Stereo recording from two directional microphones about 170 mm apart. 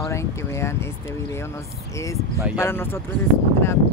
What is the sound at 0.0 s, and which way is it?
Speech, 15° left (ahead or behind).